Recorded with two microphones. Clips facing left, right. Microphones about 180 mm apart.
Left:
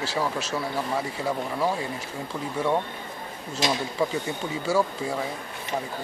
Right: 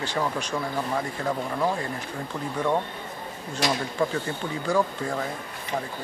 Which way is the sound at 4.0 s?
5° left (ahead or behind).